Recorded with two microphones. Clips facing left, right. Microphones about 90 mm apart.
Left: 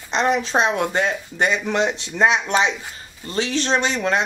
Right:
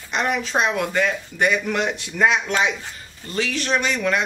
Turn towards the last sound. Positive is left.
turn(degrees=30)  # may be behind; listen again after turning